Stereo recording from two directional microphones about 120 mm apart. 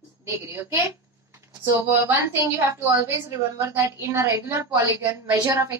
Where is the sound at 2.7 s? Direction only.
20° right (ahead or behind).